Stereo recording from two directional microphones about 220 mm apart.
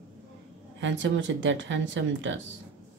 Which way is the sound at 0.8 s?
55° right (ahead or behind).